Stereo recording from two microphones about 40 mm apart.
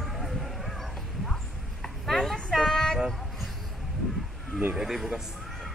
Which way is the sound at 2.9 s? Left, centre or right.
Centre.